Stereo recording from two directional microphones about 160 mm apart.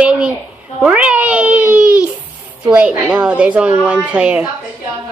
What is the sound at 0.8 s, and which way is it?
Cat, 10° right (ahead or behind).